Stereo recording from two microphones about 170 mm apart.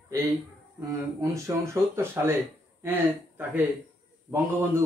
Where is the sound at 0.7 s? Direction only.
20° right (ahead or behind).